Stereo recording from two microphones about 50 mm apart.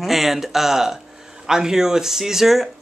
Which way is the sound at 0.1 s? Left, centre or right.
Centre.